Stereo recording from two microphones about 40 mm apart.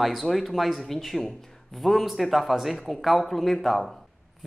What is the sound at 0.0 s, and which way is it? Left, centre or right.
Speech, centre.